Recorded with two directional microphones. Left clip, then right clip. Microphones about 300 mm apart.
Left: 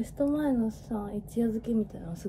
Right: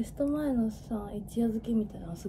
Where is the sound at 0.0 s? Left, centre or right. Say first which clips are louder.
Left 2 dB; centre.